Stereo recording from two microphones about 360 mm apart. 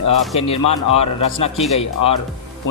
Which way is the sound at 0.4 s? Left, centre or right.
Centre.